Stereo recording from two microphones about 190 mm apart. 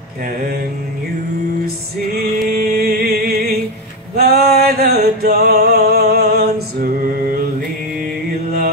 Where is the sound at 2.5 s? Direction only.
50° right (ahead or behind).